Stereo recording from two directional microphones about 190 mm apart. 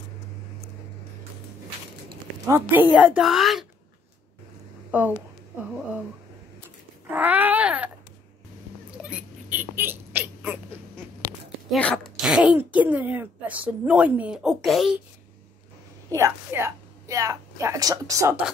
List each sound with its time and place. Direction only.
2.4 s speech: 15° right (ahead or behind)
4.9 s speech: 10° right (ahead or behind)
7.1 s a sound: 10° right (ahead or behind)
8.9 s rodents: 5° right (ahead or behind)
11.7 s speech: 5° left (ahead or behind)
16.1 s a woman's voice: 15° right (ahead or behind)